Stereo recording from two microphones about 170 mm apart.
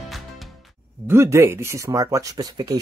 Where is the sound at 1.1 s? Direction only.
15° right (ahead or behind).